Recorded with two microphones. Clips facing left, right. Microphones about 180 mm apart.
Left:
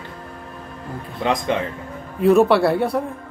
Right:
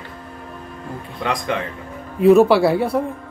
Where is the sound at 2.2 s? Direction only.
Centre (ahead or behind).